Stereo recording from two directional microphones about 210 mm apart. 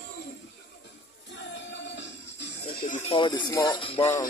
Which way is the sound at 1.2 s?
60° left (ahead or behind).